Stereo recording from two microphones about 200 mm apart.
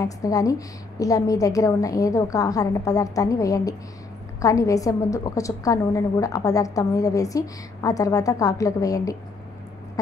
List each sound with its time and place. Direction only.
0.0 s a woman's voice: 15° left (ahead or behind)